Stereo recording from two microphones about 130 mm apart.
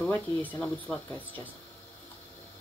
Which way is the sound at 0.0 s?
10° left (ahead or behind).